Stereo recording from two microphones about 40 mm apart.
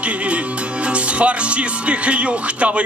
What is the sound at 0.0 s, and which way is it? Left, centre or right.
Music, right.